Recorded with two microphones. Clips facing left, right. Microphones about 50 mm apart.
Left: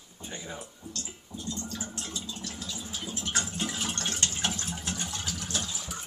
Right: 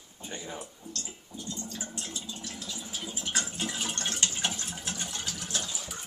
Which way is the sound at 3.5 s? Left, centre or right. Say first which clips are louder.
Left 1 dB; centre.